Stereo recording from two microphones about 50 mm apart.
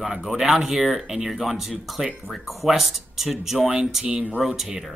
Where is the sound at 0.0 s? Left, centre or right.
Centre.